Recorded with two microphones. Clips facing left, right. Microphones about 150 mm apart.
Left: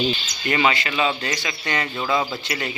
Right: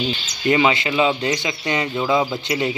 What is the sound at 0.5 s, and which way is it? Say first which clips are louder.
Speech: right 4 dB; 15° right (ahead or behind).